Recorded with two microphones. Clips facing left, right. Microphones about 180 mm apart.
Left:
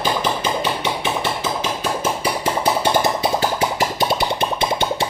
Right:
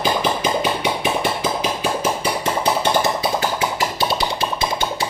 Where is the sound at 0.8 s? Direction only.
15° right (ahead or behind).